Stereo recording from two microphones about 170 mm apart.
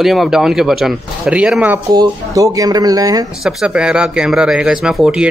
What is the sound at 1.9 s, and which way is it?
Speech, 20° right (ahead or behind).